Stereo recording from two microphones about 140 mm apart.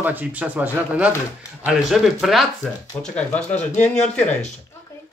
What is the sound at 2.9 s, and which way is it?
Speech, 20° left (ahead or behind).